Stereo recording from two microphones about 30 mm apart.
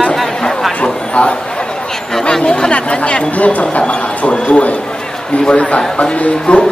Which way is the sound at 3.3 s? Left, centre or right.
Left.